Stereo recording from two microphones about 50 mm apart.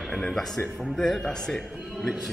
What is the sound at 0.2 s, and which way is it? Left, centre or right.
Speech, centre.